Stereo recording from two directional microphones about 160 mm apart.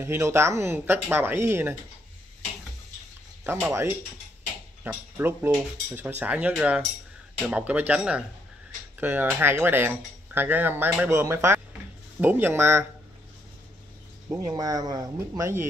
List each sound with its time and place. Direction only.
0.0 s speech: 15° right (ahead or behind)
3.6 s speech: 15° right (ahead or behind)
14.3 s speech: 20° right (ahead or behind)